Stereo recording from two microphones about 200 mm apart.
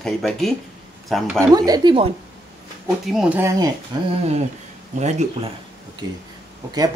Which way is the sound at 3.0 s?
5° right (ahead or behind).